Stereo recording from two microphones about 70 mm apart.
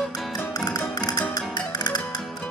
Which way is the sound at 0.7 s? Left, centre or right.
Left.